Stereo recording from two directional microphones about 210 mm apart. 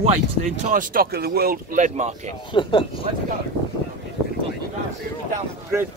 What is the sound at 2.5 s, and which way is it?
Speech, 25° left (ahead or behind).